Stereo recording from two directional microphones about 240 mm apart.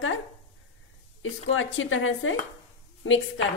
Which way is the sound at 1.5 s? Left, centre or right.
Left.